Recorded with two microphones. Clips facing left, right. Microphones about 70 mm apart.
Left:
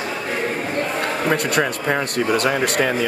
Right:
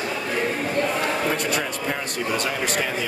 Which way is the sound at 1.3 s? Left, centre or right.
Left.